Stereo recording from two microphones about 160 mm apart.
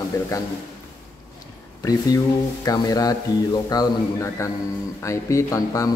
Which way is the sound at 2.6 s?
25° left (ahead or behind).